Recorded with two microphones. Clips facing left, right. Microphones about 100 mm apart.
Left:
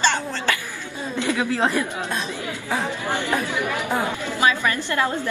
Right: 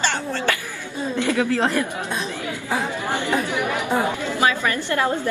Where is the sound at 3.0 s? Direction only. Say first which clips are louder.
Right 1 dB; 20° right (ahead or behind).